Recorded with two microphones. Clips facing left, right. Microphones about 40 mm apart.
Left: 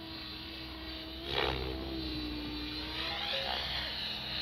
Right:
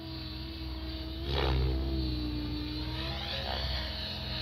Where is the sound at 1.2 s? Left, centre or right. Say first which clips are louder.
Right 1 dB; left.